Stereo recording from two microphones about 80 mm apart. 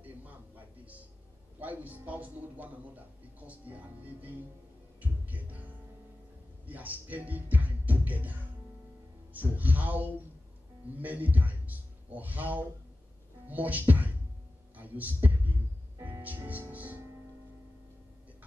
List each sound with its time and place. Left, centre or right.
0.0 s music: centre
1.6 s speech: right
5.0 s music: right
6.6 s music: right
9.3 s a man's voice: right